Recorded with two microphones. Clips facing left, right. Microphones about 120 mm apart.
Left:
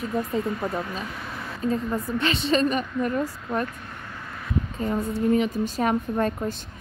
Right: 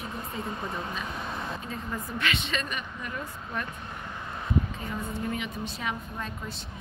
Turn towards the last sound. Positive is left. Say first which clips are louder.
# left 12 dB
turn(degrees=50)  # may be behind; listen again after turning